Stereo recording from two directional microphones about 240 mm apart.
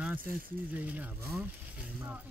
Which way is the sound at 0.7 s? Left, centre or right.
Centre.